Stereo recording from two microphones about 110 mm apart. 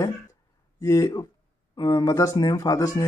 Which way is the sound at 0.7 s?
30° left (ahead or behind).